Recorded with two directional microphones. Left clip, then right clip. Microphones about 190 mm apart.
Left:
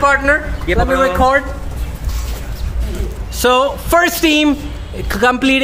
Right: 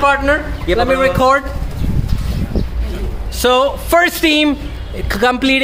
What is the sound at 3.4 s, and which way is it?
A man's voice, 5° left (ahead or behind).